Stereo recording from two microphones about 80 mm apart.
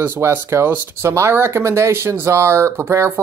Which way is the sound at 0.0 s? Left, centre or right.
Right.